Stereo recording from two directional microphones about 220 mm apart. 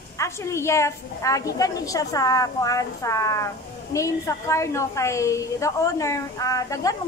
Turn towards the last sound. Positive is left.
turn(degrees=15)  # may be behind; listen again after turning